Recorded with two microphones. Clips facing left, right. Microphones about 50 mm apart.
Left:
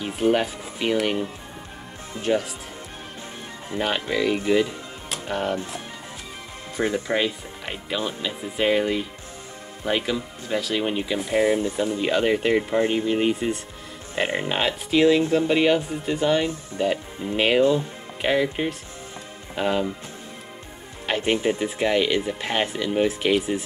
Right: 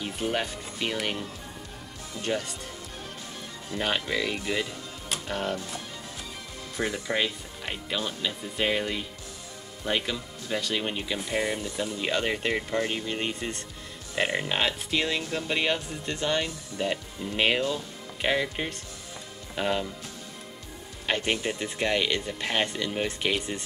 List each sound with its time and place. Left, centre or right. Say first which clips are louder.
0.0 s speech: left 8 dB; centre
2.2 s speech: left 7 dB; centre
3.8 s speech: left 5 dB; centre
6.8 s speech: left 6 dB; centre
7.2 s speech: left 4 dB; centre
21.1 s speech: left 5 dB; centre